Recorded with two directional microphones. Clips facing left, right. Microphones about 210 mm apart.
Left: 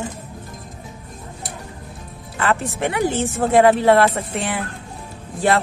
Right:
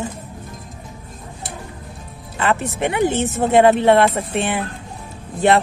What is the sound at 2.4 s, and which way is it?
Speech, 20° right (ahead or behind).